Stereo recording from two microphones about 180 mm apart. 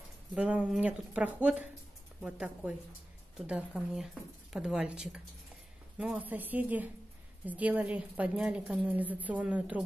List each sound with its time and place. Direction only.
0.3 s a woman's voice: 5° right (ahead or behind)